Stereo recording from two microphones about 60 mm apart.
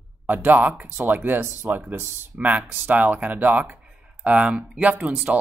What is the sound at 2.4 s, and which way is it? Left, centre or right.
Speech, right.